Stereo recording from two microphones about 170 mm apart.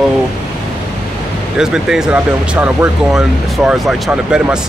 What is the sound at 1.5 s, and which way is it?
Speech, 5° right (ahead or behind).